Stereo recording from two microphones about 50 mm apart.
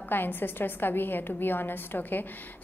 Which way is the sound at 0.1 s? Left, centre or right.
Left.